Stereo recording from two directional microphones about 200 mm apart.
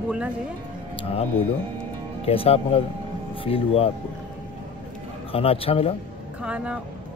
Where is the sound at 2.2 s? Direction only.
30° left (ahead or behind).